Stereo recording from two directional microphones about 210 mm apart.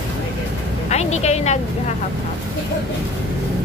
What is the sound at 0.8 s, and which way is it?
Speech, 30° left (ahead or behind).